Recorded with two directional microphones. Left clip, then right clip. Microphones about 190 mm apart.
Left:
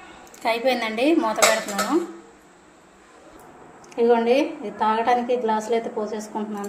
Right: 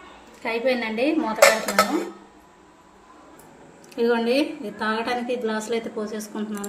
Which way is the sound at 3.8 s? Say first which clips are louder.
Left 3 dB; 40° right (ahead or behind).